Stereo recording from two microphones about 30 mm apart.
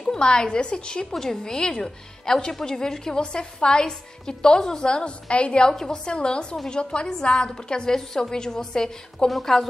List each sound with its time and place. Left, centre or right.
0.0 s a woman's voice: left
1.2 s a woman's voice: centre
4.8 s a woman's voice: left
5.7 s a woman's voice: centre
6.0 s a woman's voice: left; by 9.7 s centre